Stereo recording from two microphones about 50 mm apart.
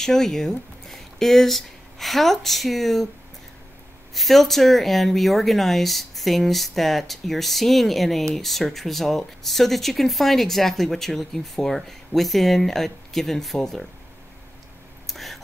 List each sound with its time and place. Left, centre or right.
0.0 s speech: centre
4.1 s speech: centre
15.0 s a sound: centre